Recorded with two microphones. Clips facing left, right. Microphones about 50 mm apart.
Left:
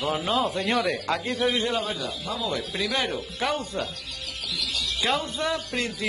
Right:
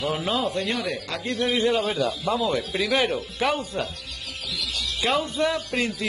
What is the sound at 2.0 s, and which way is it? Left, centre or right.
Speech, right.